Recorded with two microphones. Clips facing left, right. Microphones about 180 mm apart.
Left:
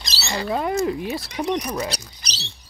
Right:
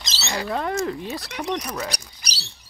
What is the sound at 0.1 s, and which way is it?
Rodents, 20° right (ahead or behind).